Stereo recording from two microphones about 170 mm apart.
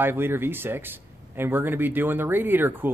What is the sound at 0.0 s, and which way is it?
A man's voice, 15° right (ahead or behind).